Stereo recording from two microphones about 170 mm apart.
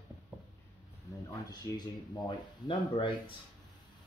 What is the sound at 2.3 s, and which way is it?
Speech, 30° left (ahead or behind).